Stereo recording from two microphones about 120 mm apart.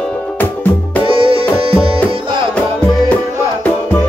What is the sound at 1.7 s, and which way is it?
Tabla, 50° right (ahead or behind).